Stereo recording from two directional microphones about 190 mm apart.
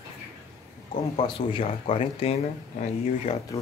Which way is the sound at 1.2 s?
25° left (ahead or behind).